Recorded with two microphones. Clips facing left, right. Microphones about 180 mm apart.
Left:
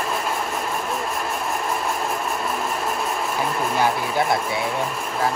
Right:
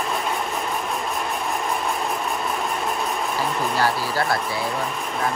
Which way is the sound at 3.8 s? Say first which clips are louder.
Left 2 dB; 20° left (ahead or behind).